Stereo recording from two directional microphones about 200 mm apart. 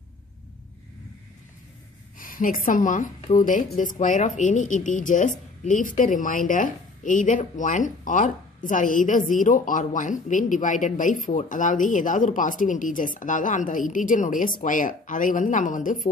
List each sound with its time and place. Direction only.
2.1 s a woman's voice: 45° left (ahead or behind)